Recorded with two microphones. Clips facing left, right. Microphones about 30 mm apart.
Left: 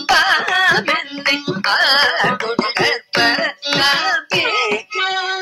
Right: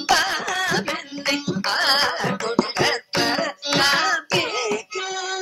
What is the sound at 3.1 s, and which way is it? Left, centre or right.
Music, left.